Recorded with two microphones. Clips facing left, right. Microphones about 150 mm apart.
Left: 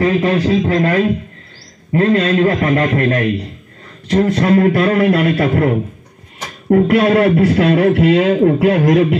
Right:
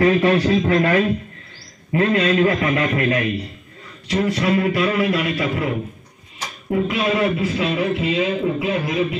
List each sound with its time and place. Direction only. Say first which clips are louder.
0.0 s speech: left 1 dB; 25° left (ahead or behind)
2.1 s a man's voice: left 3 dB; 45° left (ahead or behind); by 9.2 s 65° left (ahead or behind)